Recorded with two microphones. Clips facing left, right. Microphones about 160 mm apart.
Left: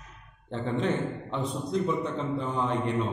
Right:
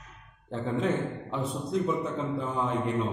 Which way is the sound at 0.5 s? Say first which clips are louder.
Even; 5° right (ahead or behind).